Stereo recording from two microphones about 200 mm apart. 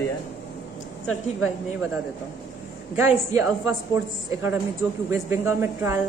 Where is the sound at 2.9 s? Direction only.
15° right (ahead or behind).